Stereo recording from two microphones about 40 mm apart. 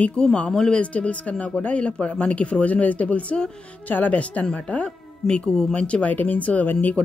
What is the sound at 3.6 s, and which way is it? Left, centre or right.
A woman's voice, left.